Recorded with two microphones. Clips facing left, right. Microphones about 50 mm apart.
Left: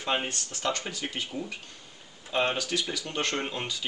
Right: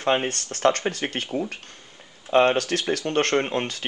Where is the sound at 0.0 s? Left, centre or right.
Right.